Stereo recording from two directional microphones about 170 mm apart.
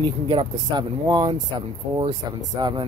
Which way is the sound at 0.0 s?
25° right (ahead or behind).